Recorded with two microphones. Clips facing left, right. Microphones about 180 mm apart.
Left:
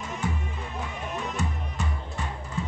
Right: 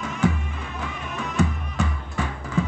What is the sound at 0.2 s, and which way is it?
Music, 90° right.